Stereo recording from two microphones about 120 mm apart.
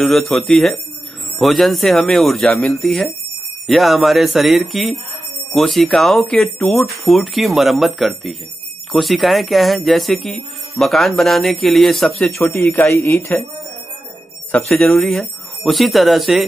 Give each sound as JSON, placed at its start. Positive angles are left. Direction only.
{"t": 0.0, "sound": "speech", "side_deg": 0}
{"t": 12.5, "sound": "speech", "side_deg": 20}
{"t": 14.8, "sound": "speech", "side_deg": 0}